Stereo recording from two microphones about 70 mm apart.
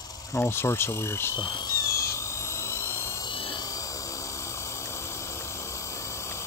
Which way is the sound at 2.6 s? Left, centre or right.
Left.